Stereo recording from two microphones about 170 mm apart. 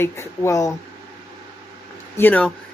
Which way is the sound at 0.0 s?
15° left (ahead or behind).